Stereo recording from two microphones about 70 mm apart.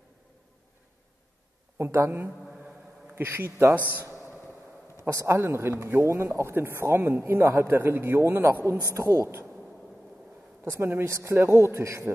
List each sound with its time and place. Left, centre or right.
1.8 s speech: right
5.0 s speech: right
10.7 s speech: right